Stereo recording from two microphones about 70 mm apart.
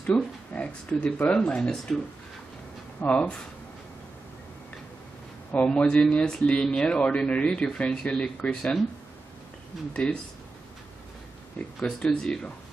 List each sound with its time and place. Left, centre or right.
0.0 s speech: centre
3.0 s speech: centre
5.5 s speech: centre
11.8 s speech: centre